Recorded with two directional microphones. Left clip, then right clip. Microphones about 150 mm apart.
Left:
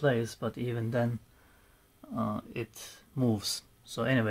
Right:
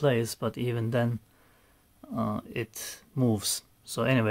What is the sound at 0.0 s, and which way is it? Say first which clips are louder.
Speech: right 3 dB; 35° right (ahead or behind).